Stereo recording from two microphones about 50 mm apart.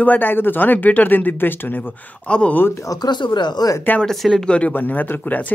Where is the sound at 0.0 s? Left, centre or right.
Left.